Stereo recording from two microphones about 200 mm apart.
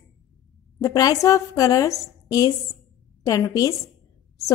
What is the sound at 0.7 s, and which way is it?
A woman's voice, 15° left (ahead or behind).